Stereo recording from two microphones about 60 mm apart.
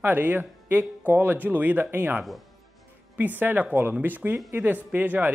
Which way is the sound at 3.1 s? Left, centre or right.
Right.